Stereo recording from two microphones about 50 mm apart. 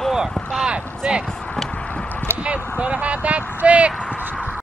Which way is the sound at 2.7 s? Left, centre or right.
Right.